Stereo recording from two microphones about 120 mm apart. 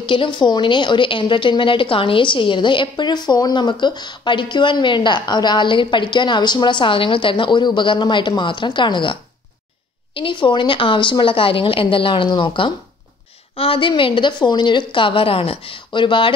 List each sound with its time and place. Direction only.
0.0 s a woman's voice: 45° left (ahead or behind)
10.1 s a woman's voice: 45° left (ahead or behind)